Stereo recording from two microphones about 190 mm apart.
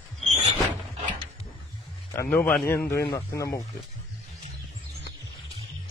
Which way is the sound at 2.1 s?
10° left (ahead or behind).